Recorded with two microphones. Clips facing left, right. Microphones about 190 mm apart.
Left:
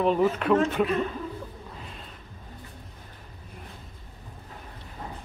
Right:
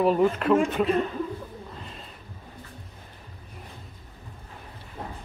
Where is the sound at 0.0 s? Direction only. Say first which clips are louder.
Right 2 dB; centre (ahead or behind).